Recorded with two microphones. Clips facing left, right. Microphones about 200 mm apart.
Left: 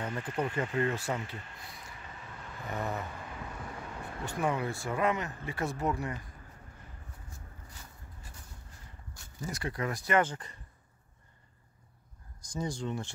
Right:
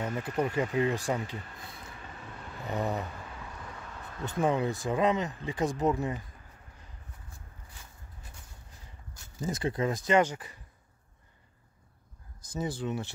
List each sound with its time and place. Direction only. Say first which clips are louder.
0.0 s speech: right 3 dB; 10° right (ahead or behind)
2.7 s speech: right 4 dB; 20° right (ahead or behind)
4.4 s speech: right 4 dB; 25° right (ahead or behind)
9.2 s speech: right 6 dB; 20° right (ahead or behind)
12.4 s speech: right 2 dB; 5° right (ahead or behind)